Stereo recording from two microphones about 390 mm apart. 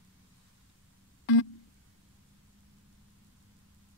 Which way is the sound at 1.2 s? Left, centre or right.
Left.